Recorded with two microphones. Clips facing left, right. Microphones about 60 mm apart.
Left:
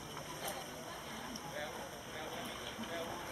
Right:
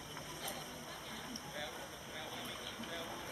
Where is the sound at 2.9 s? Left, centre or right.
Centre.